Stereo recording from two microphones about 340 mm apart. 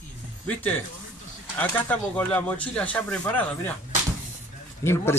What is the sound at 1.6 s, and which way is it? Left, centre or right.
Speech, centre.